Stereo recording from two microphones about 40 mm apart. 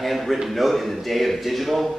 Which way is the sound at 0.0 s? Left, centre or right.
Centre.